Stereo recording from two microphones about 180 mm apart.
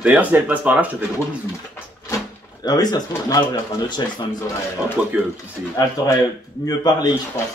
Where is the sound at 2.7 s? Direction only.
20° left (ahead or behind).